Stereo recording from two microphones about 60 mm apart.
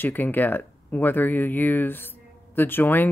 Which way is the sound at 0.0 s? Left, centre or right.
Left.